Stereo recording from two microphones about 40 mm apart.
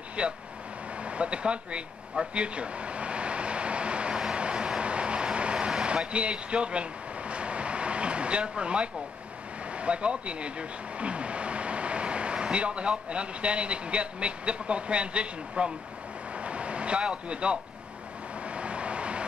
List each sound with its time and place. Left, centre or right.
0.2 s speech: right
2.3 s vehicle: right
5.7 s speech: centre
16.3 s vehicle: right